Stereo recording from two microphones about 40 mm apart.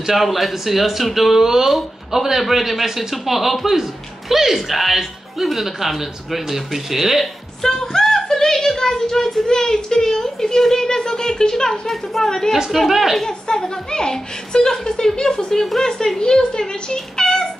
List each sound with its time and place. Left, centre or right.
0.0 s speech: centre
7.6 s speech: centre
11.9 s a woman's voice: centre
12.7 s speech: centre
13.2 s a woman's voice: centre